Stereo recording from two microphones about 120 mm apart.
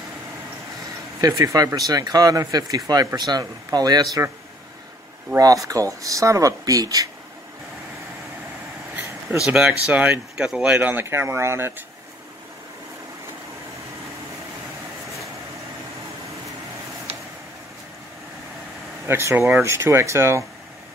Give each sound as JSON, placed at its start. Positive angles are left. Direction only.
{"t": 1.2, "sound": "speech", "side_deg": -30}
{"t": 5.4, "sound": "speech", "side_deg": -30}
{"t": 9.5, "sound": "speech", "side_deg": -5}
{"t": 19.0, "sound": "speech", "side_deg": -20}